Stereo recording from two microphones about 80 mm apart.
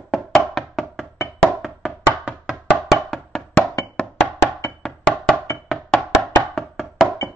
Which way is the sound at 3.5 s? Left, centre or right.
Centre.